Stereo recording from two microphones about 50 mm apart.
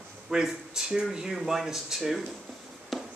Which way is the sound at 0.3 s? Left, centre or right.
Centre.